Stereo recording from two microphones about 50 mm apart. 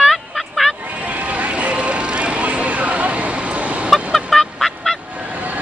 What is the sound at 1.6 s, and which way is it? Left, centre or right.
Vehicle, right.